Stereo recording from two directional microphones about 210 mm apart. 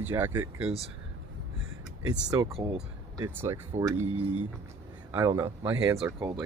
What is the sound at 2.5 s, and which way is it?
Speech, 25° right (ahead or behind).